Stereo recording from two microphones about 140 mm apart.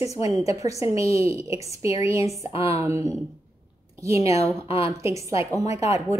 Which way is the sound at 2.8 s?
20° right (ahead or behind).